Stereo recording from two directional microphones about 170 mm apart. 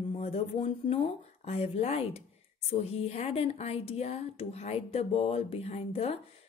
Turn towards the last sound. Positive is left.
turn(degrees=35)  # may be behind; listen again after turning